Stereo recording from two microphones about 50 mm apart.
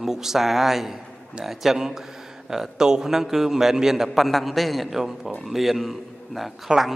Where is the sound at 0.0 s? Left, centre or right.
Centre.